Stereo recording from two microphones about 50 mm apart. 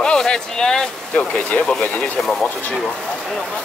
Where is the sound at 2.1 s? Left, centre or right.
Centre.